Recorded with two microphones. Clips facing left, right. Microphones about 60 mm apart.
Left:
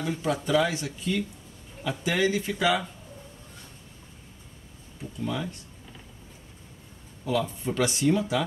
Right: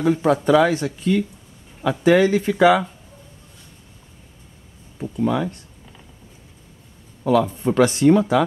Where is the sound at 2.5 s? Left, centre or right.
Right.